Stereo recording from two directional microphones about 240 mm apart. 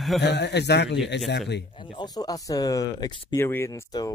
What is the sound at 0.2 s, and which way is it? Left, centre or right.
Speech, left.